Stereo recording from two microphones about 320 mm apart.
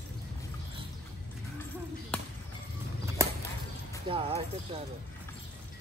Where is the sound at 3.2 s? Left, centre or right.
Centre.